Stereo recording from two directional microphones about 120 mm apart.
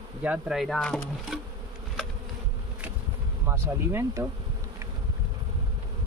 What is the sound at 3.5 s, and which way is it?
Insect, 20° right (ahead or behind).